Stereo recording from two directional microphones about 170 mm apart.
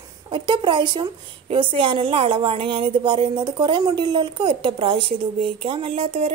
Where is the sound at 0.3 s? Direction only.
30° right (ahead or behind).